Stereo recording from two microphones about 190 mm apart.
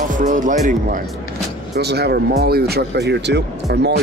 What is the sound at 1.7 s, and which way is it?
Speech, 60° right (ahead or behind).